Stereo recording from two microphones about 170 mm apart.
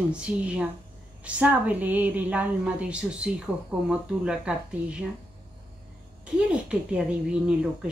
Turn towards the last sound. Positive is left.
turn(degrees=-5)  # may be behind; listen again after turning